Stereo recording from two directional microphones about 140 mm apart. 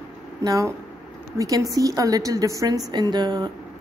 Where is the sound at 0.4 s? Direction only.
25° right (ahead or behind).